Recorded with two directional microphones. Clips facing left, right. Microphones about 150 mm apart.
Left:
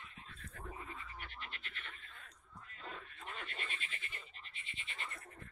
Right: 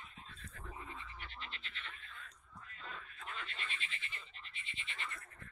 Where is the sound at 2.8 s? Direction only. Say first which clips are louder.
Left 1 dB; 50° left (ahead or behind).